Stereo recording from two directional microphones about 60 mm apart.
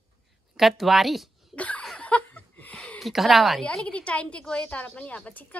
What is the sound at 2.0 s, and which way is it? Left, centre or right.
Chuckle, left.